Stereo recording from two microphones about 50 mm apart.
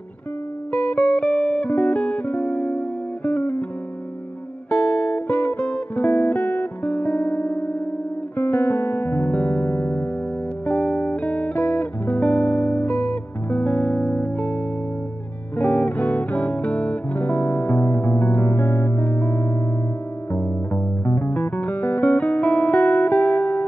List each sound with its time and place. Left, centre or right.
0.7 s music: left
4.6 s music: left
20.7 s music: left